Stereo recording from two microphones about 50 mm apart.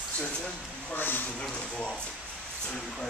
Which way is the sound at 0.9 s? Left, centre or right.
Left.